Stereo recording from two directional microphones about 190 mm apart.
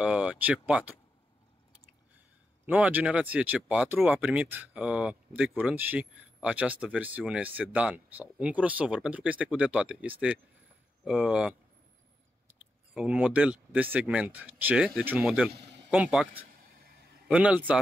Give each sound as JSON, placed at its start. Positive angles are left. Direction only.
{"t": 0.0, "sound": "speech", "side_deg": -5}
{"t": 2.6, "sound": "speech", "side_deg": -10}
{"t": 12.9, "sound": "speech", "side_deg": -5}
{"t": 16.7, "sound": "a sound", "side_deg": -55}
{"t": 17.3, "sound": "speech", "side_deg": -5}